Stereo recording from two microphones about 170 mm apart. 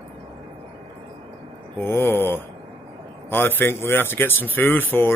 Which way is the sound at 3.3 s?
10° left (ahead or behind).